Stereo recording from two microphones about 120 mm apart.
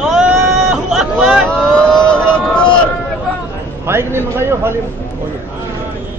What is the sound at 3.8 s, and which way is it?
Speech, 20° right (ahead or behind).